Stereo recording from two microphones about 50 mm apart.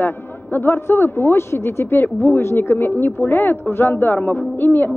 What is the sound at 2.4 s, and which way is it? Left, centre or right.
Speech, left.